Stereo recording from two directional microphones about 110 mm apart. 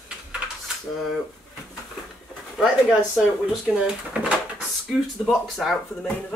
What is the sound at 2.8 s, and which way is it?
Speech, 5° right (ahead or behind).